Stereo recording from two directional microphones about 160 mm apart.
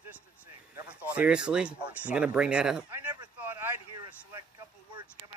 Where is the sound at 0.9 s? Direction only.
5° right (ahead or behind).